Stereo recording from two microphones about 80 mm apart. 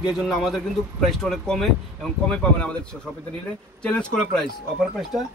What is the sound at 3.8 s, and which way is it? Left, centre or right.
Speech, centre.